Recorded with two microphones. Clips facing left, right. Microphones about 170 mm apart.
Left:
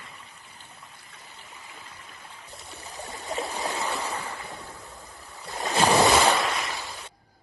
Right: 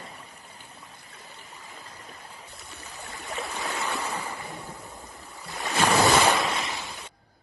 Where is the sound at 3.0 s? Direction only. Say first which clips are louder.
Left 1 dB; 20° left (ahead or behind).